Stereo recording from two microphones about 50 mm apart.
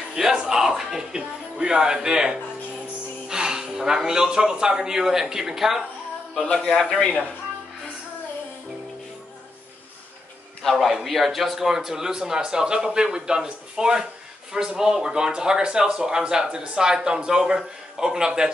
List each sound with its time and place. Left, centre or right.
0.1 s speech: centre
6.4 s a man's voice: centre
6.7 s a man's voice: centre
10.6 s speech: centre